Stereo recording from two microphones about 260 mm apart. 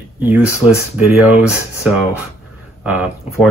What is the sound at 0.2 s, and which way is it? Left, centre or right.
Speech, centre.